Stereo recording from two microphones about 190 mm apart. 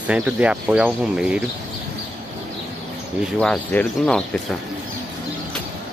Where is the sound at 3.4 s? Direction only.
5° left (ahead or behind).